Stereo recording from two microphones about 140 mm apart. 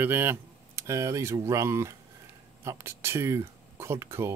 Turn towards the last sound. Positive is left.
turn(degrees=-20)  # may be behind; listen again after turning